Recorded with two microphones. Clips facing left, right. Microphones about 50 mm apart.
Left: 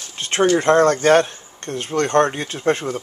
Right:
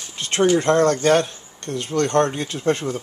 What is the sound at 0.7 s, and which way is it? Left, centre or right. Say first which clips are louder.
Speech: left 3 dB; left.